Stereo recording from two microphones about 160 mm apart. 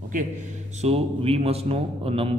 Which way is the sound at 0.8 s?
40° right (ahead or behind).